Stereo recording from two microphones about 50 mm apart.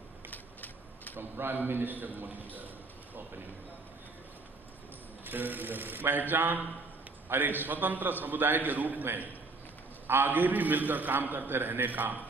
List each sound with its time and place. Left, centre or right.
0.3 s a sound: left
1.1 s a man's voice: right
5.2 s a man's voice: right